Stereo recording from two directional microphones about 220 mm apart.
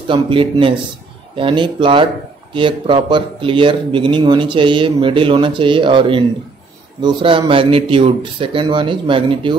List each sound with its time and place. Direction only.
0.1 s speech: 25° right (ahead or behind)